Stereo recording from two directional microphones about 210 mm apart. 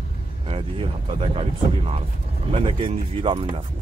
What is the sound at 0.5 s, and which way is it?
Speech, 25° right (ahead or behind).